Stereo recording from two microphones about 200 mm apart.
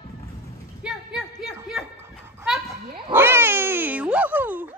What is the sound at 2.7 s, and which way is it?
Cat, 15° right (ahead or behind).